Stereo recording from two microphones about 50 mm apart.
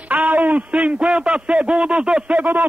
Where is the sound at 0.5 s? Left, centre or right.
Right.